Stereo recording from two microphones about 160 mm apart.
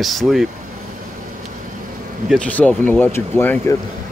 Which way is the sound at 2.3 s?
10° left (ahead or behind).